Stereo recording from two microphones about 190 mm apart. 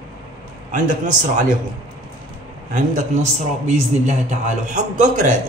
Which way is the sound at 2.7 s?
40° right (ahead or behind).